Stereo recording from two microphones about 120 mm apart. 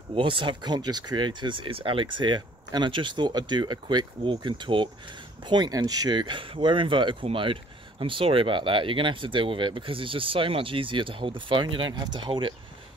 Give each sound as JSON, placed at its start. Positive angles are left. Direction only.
{"t": 0.1, "sound": "speech", "side_deg": -45}